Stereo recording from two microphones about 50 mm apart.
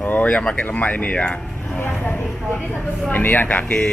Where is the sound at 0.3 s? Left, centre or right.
Centre.